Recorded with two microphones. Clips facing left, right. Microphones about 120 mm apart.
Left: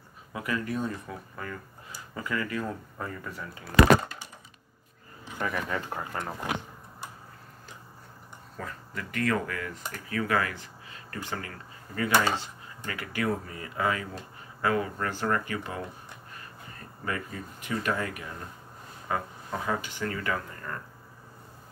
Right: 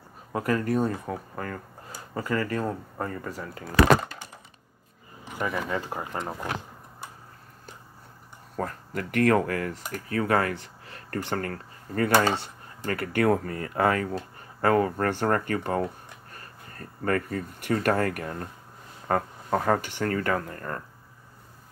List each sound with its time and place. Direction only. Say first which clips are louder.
0.3 s speech: right 6 dB; 45° right (ahead or behind)
5.4 s speech: right 2 dB; 10° right (ahead or behind)
8.5 s speech: right 7 dB; 55° right (ahead or behind)